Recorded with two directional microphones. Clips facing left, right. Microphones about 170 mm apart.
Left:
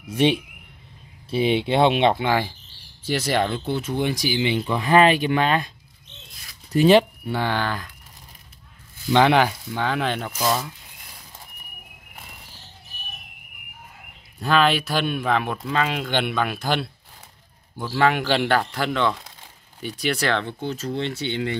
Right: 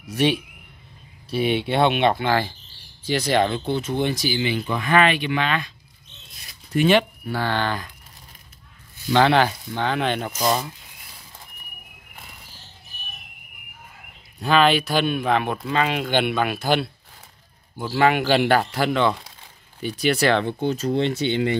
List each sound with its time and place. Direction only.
0.1 s speech: 25° left (ahead or behind)
2.2 s speech: centre (ahead or behind); by 5.7 s 45° left (ahead or behind)
6.8 s speech: 35° left (ahead or behind)
7.5 s speech: 5° left (ahead or behind)
9.2 s speech: 10° left (ahead or behind)
14.4 s speech: centre (ahead or behind)
17.9 s speech: 5° right (ahead or behind)